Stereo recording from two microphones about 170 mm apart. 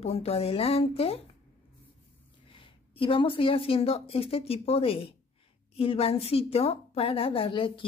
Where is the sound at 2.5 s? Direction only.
30° left (ahead or behind).